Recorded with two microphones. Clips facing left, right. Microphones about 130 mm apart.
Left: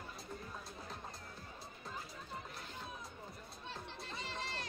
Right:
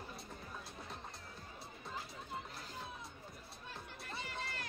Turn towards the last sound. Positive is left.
turn(degrees=25)  # may be behind; listen again after turning